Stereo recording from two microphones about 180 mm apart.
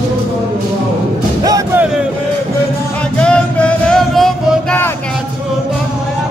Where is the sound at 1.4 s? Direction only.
20° right (ahead or behind).